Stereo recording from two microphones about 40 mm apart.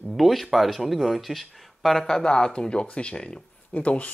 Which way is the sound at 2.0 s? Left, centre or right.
Centre.